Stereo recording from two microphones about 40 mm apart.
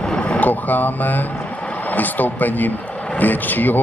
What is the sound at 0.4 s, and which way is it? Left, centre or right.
Speech, left.